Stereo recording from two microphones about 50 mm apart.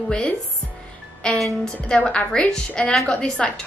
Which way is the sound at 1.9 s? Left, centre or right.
Left.